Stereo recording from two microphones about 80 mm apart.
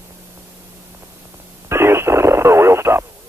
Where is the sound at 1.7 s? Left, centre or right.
Right.